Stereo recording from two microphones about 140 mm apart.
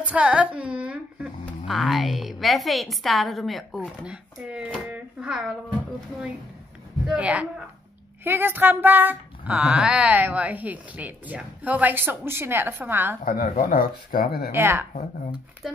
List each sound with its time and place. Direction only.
0.0 s speech: 10° right (ahead or behind)
7.1 s speech: 10° right (ahead or behind)
13.2 s speech: 75° left (ahead or behind)
14.5 s speech: 15° right (ahead or behind)
15.6 s music: centre (ahead or behind)